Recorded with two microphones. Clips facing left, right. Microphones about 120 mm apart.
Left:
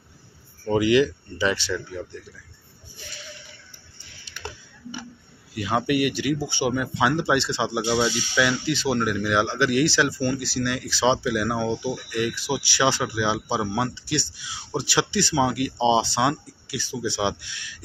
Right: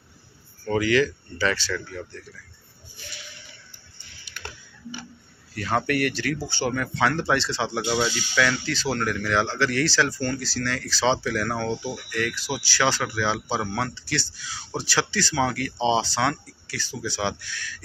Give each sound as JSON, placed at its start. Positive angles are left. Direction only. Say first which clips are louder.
{"t": 0.7, "sound": "speech", "louder": "left 2 dB", "side_deg": 20}
{"t": 5.5, "sound": "speech", "louder": "left 1 dB", "side_deg": 15}